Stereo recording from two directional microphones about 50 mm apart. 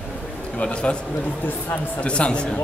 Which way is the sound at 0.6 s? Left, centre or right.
Left.